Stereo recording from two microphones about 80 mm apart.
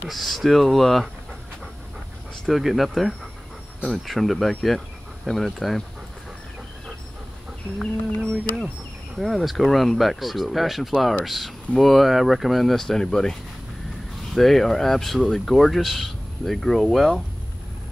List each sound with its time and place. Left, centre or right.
0.1 s speech: centre
2.4 s speech: centre
9.2 s speech: centre